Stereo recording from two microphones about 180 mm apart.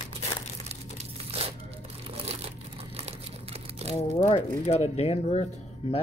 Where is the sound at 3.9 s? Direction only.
35° left (ahead or behind).